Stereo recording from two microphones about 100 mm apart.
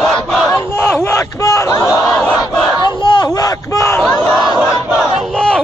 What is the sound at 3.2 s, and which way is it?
Battle cry, 35° left (ahead or behind).